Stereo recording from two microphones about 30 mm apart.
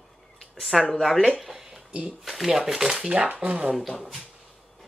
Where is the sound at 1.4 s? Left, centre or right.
Centre.